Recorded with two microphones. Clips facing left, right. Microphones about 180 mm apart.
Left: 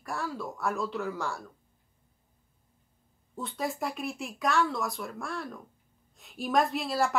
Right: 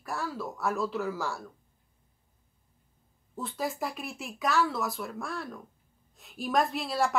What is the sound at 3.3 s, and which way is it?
A woman's voice, centre (ahead or behind).